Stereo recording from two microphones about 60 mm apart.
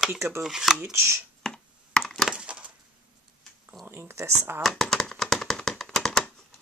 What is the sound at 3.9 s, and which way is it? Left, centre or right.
Speech, right.